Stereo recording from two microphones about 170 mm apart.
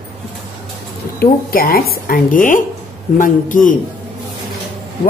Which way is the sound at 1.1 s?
60° left (ahead or behind).